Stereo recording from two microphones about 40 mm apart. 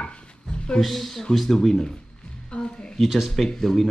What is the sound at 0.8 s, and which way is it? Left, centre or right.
Speech, centre.